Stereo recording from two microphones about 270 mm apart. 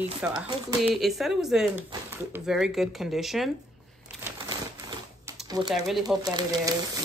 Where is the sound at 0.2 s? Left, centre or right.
Centre.